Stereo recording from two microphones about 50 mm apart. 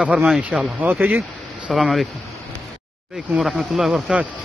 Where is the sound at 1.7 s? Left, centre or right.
Centre.